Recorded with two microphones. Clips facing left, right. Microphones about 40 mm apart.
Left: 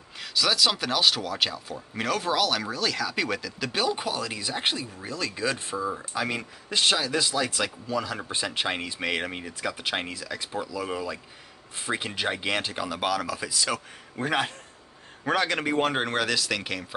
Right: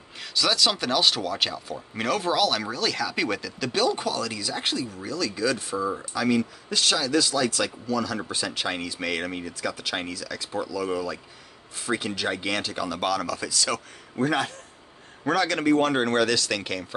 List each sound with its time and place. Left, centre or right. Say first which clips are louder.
0.2 s speech: right 1 dB; centre; by 5.8 s left
5.8 s speech: right 2 dB; centre
6.1 s speech: right 6 dB; left; by 16.8 s centre